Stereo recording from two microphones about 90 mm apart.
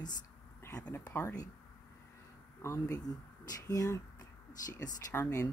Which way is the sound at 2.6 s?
35° left (ahead or behind).